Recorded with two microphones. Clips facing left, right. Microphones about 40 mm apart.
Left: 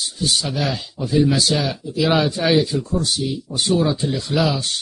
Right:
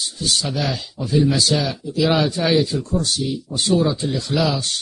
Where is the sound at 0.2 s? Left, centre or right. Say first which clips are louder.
Left 1 dB; centre.